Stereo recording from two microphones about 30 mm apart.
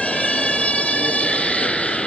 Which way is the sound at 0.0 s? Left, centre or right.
Left.